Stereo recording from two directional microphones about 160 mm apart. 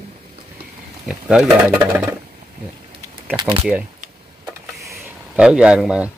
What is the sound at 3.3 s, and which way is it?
Speech, 25° right (ahead or behind).